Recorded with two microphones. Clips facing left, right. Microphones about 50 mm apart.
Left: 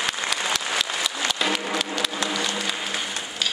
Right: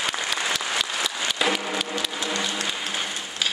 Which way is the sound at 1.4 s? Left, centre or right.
Centre.